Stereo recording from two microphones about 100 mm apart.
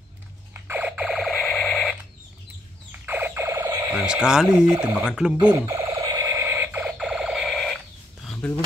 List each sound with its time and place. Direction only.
0.7 s alarm: 15° right (ahead or behind); by 2.0 s 5° left (ahead or behind)
3.1 s a sound: 20° right (ahead or behind)
3.9 s speech: 10° right (ahead or behind)
5.4 s speech: 45° right (ahead or behind)
5.8 s a sound: 35° right (ahead or behind)
6.3 s alarm: 25° right (ahead or behind)
6.8 s alarm: 5° right (ahead or behind)
8.4 s speech: 10° left (ahead or behind)